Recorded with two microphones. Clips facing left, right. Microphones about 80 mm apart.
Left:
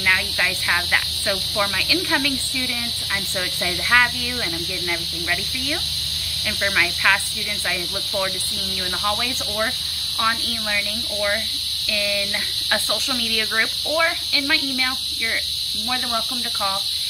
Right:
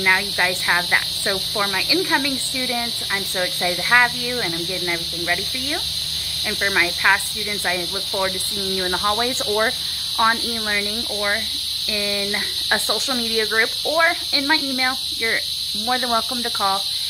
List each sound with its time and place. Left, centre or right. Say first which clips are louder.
0.0 s speech: right 2 dB; right
3.3 s speech: right 6 dB; centre
6.6 s speech: right 1 dB; centre
9.0 s speech: right 1 dB; right
15.9 s speech: right 5 dB; right